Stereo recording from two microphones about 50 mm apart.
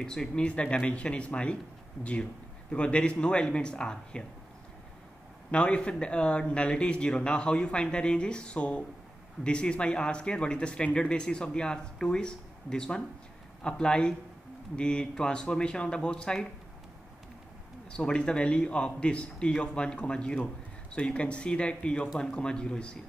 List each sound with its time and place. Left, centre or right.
0.0 s speech: centre
2.7 s speech: left
5.5 s speech: left
17.9 s speech: centre